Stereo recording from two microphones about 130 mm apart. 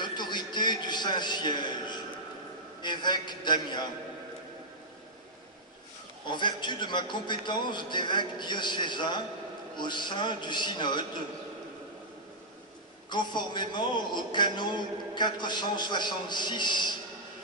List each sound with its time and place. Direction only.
0.0 s a sound: 35° left (ahead or behind)
2.8 s a man's voice: 35° left (ahead or behind)
6.2 s a man's voice: 35° left (ahead or behind)
13.1 s a man's voice: 35° left (ahead or behind)